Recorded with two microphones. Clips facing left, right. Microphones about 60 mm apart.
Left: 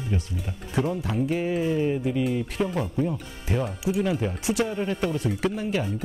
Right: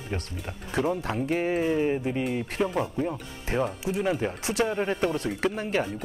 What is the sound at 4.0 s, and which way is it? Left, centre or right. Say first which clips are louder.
Speech: even; right.